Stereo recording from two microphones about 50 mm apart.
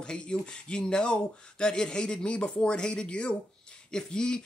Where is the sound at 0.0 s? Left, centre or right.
Centre.